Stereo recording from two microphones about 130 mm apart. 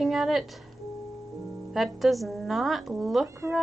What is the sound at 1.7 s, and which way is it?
Speech, centre (ahead or behind).